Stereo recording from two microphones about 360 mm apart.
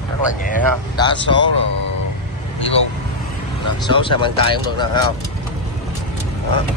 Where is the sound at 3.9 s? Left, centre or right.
Centre.